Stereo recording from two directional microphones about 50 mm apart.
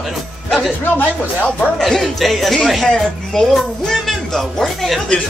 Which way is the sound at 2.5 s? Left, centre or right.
Centre.